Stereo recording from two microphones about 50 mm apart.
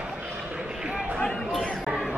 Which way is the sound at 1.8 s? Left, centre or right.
Centre.